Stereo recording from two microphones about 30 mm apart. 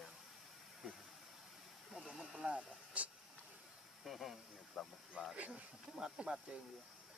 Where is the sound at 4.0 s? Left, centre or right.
Centre.